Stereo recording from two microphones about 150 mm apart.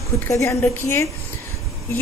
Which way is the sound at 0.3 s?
20° left (ahead or behind).